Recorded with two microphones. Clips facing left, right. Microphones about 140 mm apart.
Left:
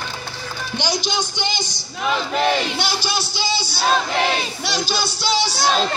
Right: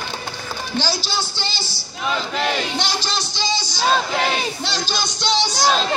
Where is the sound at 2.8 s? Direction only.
10° left (ahead or behind).